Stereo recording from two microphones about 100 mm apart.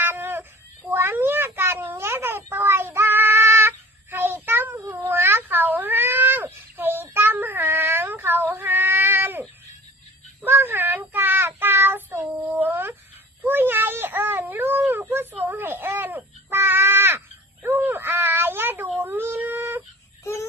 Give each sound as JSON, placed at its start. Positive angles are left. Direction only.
{"t": 0.0, "sound": "cat", "side_deg": -20}
{"t": 10.4, "sound": "child singing", "side_deg": -20}
{"t": 12.5, "sound": "a sound", "side_deg": -20}